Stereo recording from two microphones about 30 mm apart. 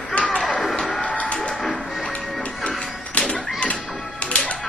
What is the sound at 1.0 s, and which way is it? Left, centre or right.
Music, left.